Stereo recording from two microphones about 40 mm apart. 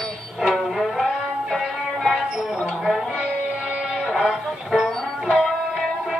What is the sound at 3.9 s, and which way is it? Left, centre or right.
Music, centre.